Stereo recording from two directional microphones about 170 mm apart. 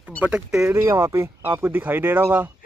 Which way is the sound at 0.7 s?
15° right (ahead or behind).